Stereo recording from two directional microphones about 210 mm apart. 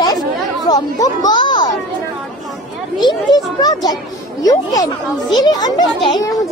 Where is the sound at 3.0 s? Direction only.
20° left (ahead or behind).